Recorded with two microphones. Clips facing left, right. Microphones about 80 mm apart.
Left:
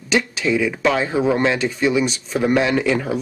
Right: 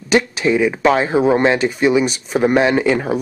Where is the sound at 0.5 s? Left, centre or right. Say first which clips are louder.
Right 4 dB; right.